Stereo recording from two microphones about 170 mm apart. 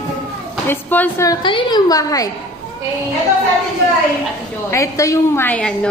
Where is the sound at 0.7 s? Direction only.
10° left (ahead or behind).